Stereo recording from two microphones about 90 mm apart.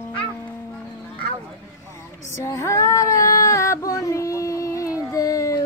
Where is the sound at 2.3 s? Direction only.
35° left (ahead or behind).